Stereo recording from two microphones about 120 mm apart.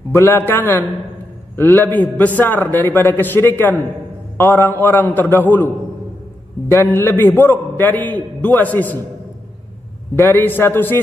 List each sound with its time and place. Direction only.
0.1 s a man's voice: 20° left (ahead or behind)
6.7 s a man's voice: 20° left (ahead or behind)
10.1 s a man's voice: 15° left (ahead or behind)